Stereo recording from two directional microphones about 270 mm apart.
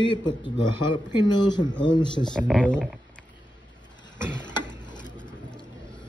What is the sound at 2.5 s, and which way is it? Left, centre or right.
Speech, centre.